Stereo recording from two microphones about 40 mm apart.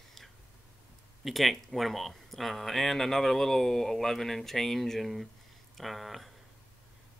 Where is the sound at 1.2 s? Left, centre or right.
Centre.